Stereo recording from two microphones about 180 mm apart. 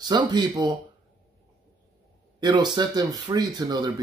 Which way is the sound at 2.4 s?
25° right (ahead or behind).